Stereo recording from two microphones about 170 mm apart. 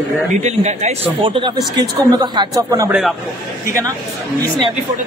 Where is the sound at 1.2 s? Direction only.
30° right (ahead or behind).